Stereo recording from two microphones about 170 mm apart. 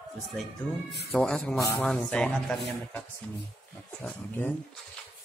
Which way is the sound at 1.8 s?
5° left (ahead or behind).